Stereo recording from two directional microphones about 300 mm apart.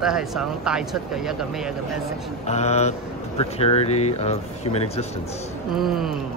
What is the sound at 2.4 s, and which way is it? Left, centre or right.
Speech, left.